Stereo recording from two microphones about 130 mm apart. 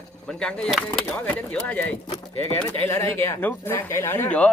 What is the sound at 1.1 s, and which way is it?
Speech, 10° left (ahead or behind).